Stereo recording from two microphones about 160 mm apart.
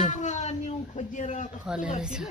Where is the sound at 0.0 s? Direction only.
50° left (ahead or behind).